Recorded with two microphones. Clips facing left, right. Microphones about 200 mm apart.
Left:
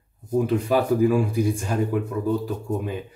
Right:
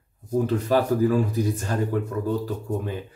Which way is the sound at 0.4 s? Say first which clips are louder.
Left 1 dB; 10° left (ahead or behind).